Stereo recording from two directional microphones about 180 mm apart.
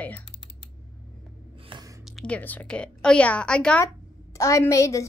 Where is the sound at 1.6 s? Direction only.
25° right (ahead or behind).